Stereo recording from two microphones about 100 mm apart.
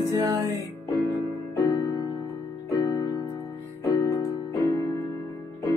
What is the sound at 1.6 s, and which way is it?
Music, 40° left (ahead or behind).